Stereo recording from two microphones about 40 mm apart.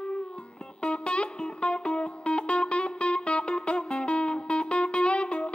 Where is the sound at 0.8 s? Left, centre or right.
Left.